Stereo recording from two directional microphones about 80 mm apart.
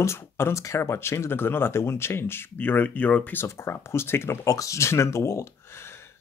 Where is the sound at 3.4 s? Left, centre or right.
Left.